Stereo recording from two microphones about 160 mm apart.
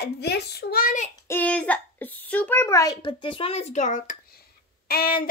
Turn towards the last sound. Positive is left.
turn(degrees=70)  # may be behind; listen again after turning